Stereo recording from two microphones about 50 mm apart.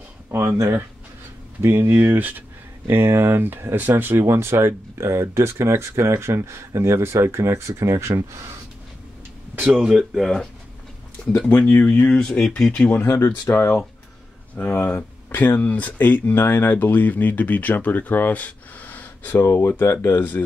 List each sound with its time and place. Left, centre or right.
0.3 s speech: right
1.6 s speech: right
2.9 s speech: right
4.3 s speech: right
9.8 s speech: centre
11.4 s speech: left
12.9 s speech: left
14.5 s speech: left
19.9 s speech: left
20.2 s speech: left